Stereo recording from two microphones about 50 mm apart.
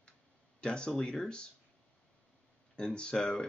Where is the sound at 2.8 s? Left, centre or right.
Centre.